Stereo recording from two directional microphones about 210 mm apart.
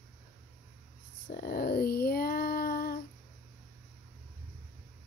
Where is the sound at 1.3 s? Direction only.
45° left (ahead or behind).